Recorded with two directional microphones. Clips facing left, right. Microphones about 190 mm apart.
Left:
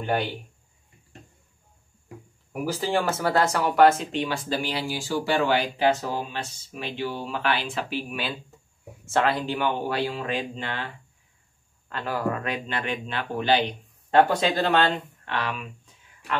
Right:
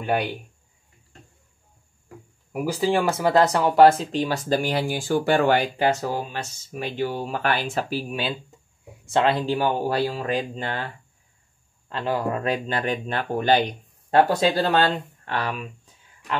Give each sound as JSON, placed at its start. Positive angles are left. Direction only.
{"t": 2.5, "sound": "speech", "side_deg": -10}
{"t": 8.1, "sound": "speech", "side_deg": -25}
{"t": 11.9, "sound": "speech", "side_deg": -20}
{"t": 12.5, "sound": "speech", "side_deg": -40}